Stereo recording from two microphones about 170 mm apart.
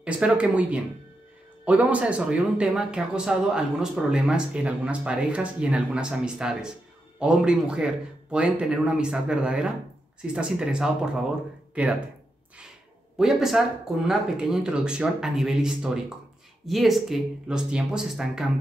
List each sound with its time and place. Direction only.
0.0 s speech: 5° right (ahead or behind)
13.2 s speech: centre (ahead or behind)